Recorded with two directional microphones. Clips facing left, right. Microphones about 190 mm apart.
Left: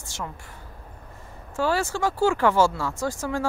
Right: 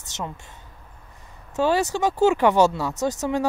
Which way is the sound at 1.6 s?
20° right (ahead or behind).